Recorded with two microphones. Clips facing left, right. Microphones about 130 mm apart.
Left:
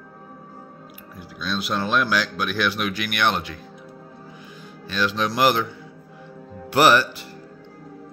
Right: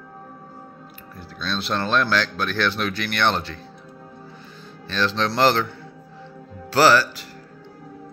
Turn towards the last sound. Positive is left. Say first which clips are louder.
# even
turn(degrees=20)  # may be behind; listen again after turning